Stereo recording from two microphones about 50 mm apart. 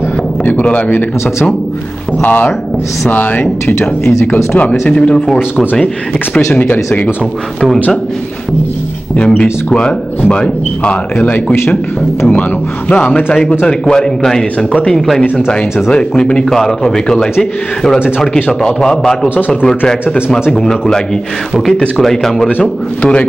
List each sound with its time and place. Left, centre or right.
0.7 s speech: left
4.6 s speech: left
6.5 s speech: left
9.1 s a man's voice: left
14.7 s speech: left
15.0 s a man's voice: centre
15.3 s speech: centre
16.4 s a man's voice: centre
21.7 s a man's voice: centre